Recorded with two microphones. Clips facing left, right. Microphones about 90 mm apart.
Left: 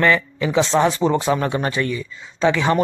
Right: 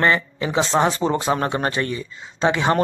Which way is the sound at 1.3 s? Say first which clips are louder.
Left 1 dB; 35° right (ahead or behind).